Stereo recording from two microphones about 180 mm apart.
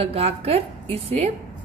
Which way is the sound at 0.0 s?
35° right (ahead or behind).